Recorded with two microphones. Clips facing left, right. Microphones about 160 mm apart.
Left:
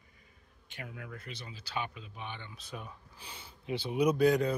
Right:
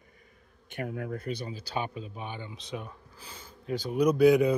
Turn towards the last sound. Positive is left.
turn(degrees=-10)  # may be behind; listen again after turning